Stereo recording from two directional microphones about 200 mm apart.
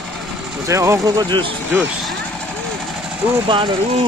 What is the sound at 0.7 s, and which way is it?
Speech, 15° right (ahead or behind).